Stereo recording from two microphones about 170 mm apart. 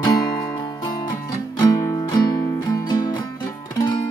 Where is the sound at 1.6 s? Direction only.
20° left (ahead or behind).